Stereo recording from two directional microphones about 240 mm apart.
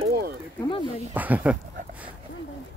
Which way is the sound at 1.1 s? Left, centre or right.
Centre.